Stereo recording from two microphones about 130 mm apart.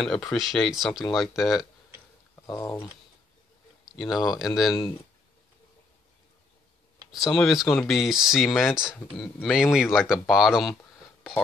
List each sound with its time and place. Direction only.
0.0 s speech: 5° left (ahead or behind)
2.6 s speech: 25° left (ahead or behind)
3.8 s speech: centre (ahead or behind)
7.1 s speech: centre (ahead or behind)